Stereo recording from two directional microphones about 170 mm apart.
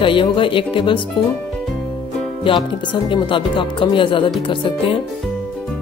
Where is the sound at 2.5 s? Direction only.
30° left (ahead or behind).